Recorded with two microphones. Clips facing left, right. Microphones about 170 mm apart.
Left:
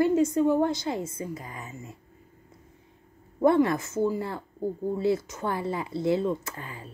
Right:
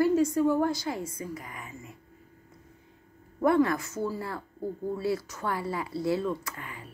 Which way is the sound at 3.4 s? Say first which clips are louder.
Left 2 dB; 25° left (ahead or behind).